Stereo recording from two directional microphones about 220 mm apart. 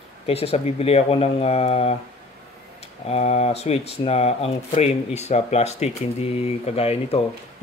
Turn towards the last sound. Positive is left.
turn(degrees=25)  # may be behind; listen again after turning